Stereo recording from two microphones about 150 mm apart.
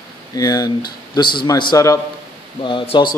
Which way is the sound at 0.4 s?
25° left (ahead or behind).